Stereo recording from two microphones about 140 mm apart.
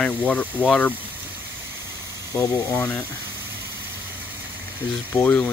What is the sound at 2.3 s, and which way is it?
Speech, 20° left (ahead or behind).